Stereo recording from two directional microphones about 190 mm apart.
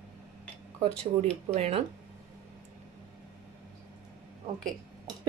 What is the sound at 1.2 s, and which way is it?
Speech, 30° right (ahead or behind).